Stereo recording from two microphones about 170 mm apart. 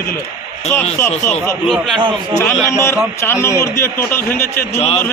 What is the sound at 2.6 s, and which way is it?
A man's voice, 15° left (ahead or behind).